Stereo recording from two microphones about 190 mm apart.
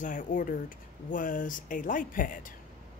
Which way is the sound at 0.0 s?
40° left (ahead or behind).